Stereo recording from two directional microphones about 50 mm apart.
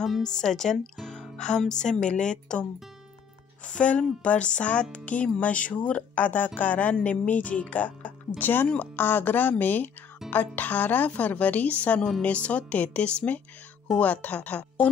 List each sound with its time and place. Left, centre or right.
0.2 s speech: centre
1.0 s music: centre
1.7 s a woman's voice: centre; by 14.9 s left